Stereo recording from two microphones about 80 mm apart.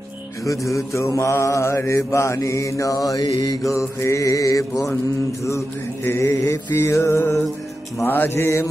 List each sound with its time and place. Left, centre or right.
0.7 s mantra: left
6.0 s mantra: left